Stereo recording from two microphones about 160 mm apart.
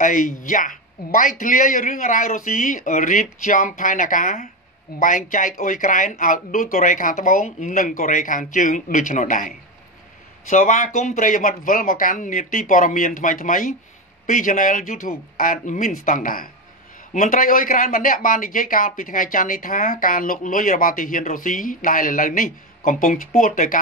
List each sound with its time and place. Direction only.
0.0 s speech: 55° left (ahead or behind)
10.5 s speech: 55° left (ahead or behind)